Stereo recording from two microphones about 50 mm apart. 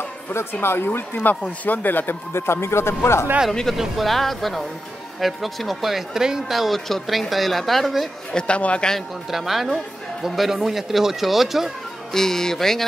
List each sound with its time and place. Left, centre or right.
0.3 s speech: left
1.4 s speech: left
2.3 s speech: left
3.7 s speech: centre
8.3 s a man's voice: left
9.3 s speech: centre
12.1 s speech: centre